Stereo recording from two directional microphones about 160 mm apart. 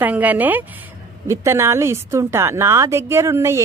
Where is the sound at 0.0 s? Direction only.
10° right (ahead or behind).